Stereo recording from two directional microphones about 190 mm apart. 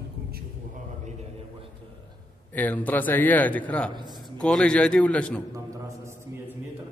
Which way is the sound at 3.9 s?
25° right (ahead or behind).